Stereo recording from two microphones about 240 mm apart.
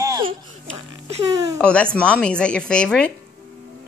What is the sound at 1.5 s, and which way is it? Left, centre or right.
A woman's voice, centre.